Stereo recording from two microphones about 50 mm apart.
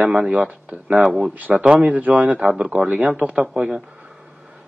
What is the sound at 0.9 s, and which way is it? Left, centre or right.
Speech, centre.